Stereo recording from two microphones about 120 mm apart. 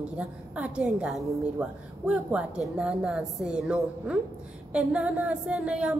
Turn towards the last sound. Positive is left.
turn(degrees=-10)  # may be behind; listen again after turning